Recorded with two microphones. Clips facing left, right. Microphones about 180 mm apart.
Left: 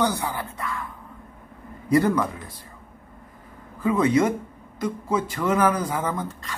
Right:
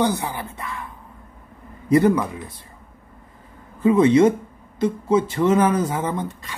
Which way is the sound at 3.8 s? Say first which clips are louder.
Right 6 dB; 25° right (ahead or behind).